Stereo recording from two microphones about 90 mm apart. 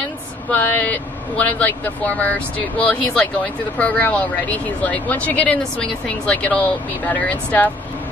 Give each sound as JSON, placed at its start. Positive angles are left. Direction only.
{"t": 0.5, "sound": "speech", "side_deg": 20}